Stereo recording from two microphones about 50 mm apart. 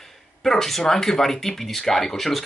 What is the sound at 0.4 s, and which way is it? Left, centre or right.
Speech, centre.